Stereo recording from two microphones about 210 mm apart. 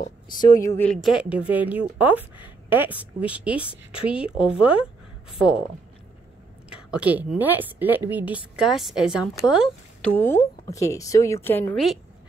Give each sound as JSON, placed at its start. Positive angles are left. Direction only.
{"t": 0.0, "sound": "speech", "side_deg": 40}
{"t": 1.0, "sound": "a woman's voice", "side_deg": -5}
{"t": 6.7, "sound": "a woman's voice", "side_deg": -5}
{"t": 10.1, "sound": "a woman's voice", "side_deg": 10}